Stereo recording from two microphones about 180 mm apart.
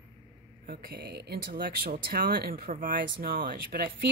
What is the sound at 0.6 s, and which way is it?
Speech, 60° right (ahead or behind).